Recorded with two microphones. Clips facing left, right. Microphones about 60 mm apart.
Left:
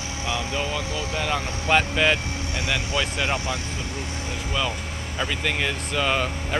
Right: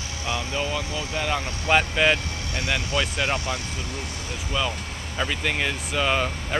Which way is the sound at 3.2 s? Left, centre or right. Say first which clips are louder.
Even; centre.